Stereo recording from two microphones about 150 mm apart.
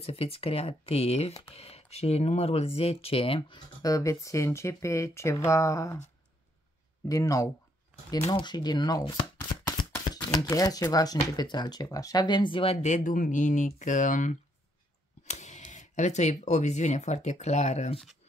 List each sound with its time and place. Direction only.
0.0 s speech: 40° left (ahead or behind); by 5.9 s 20° left (ahead or behind)
7.1 s speech: 20° left (ahead or behind)
10.4 s speech: 25° left (ahead or behind)
12.8 s speech: 60° left (ahead or behind)